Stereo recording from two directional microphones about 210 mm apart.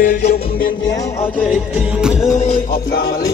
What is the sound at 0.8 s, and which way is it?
Music, 20° left (ahead or behind).